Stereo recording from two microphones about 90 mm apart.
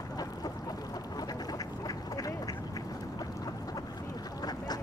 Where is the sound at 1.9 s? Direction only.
45° left (ahead or behind).